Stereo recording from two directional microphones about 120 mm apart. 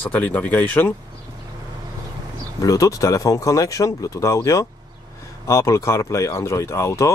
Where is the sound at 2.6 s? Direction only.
25° left (ahead or behind).